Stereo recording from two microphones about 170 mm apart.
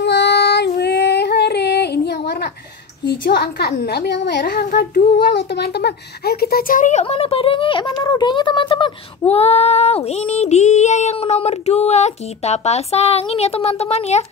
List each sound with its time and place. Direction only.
0.0 s female singing: 90° left
3.1 s a woman's voice: 70° left (ahead or behind)
5.5 s female singing: 75° left (ahead or behind); by 14.2 s 40° left (ahead or behind)